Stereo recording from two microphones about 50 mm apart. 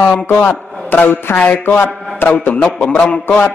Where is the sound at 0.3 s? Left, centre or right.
Left.